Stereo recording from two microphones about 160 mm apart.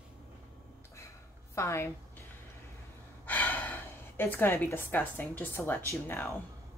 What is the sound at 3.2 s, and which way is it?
Speech, 10° left (ahead or behind).